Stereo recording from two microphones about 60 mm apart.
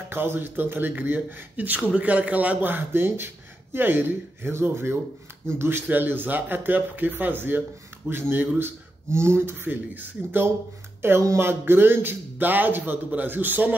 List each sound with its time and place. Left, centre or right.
0.1 s a man's voice: right
1.8 s a man's voice: centre; by 9.6 s right
9.7 s a man's voice: right